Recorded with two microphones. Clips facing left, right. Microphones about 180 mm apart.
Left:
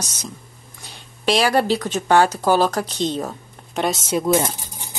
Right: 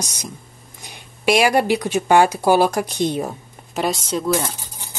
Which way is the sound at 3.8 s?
Centre (ahead or behind).